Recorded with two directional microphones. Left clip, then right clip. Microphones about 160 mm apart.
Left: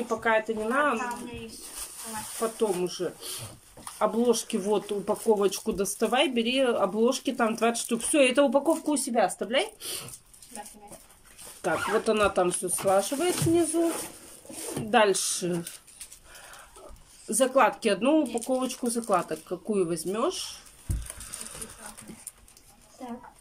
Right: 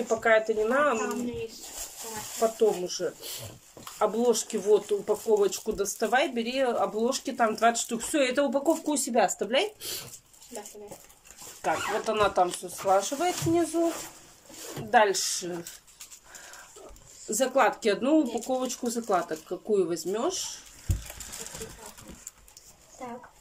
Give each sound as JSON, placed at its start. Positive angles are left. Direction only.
{"t": 0.2, "sound": "speech", "side_deg": 0}
{"t": 2.4, "sound": "speech", "side_deg": 0}
{"t": 8.8, "sound": "speech", "side_deg": 0}
{"t": 11.6, "sound": "speech", "side_deg": 20}
{"t": 14.9, "sound": "speech", "side_deg": 20}
{"t": 17.3, "sound": "speech", "side_deg": 10}